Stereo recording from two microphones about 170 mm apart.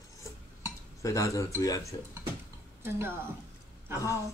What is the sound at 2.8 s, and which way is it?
Speech, 15° right (ahead or behind).